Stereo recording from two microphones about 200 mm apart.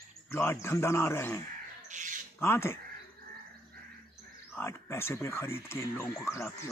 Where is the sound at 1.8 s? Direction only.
40° right (ahead or behind).